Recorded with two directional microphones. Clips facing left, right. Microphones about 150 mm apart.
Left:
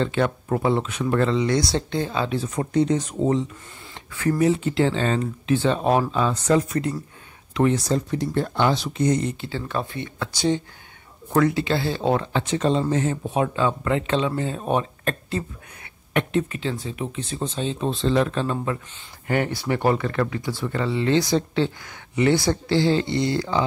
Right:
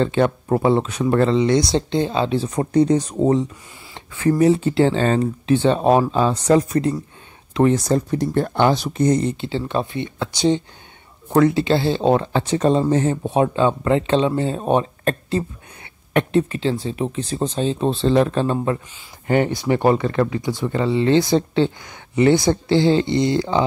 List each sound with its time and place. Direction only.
0.0 s speech: 30° right (ahead or behind)
7.9 s speech: 50° right (ahead or behind)
9.4 s speech: 25° right (ahead or behind)
12.3 s speech: 35° right (ahead or behind)
19.2 s speech: 25° right (ahead or behind)